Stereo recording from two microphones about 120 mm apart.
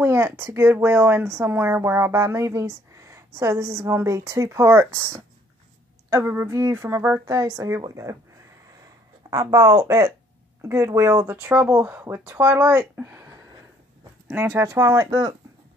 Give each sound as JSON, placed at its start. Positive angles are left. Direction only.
{"t": 0.0, "sound": "speech", "side_deg": -20}
{"t": 7.2, "sound": "speech", "side_deg": -30}
{"t": 9.3, "sound": "speech", "side_deg": -30}
{"t": 13.0, "sound": "a sound", "side_deg": -20}
{"t": 14.3, "sound": "speech", "side_deg": -20}